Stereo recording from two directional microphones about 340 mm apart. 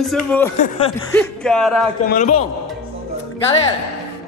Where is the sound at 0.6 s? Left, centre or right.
Centre.